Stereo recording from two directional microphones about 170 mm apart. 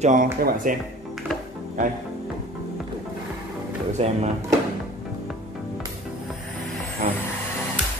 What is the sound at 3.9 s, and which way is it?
Speech, 40° right (ahead or behind).